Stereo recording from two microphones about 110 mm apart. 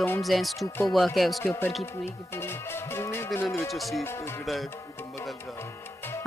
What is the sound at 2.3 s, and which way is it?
Speech, 20° left (ahead or behind).